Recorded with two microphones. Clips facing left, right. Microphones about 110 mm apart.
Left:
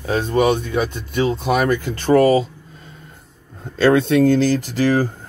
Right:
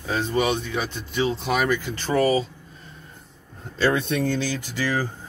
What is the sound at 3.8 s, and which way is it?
Speech, 90° left.